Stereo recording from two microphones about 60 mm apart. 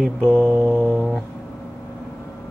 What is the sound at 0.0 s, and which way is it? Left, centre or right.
Mantra, centre.